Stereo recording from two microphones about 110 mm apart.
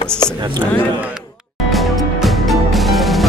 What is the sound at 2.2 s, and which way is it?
Music, centre (ahead or behind).